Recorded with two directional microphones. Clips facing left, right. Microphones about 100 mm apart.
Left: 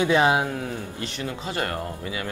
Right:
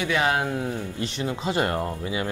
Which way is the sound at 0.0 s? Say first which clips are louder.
Left 4 dB; 25° left (ahead or behind).